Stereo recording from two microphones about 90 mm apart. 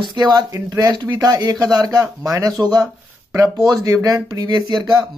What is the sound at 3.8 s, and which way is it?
Speech, 40° right (ahead or behind).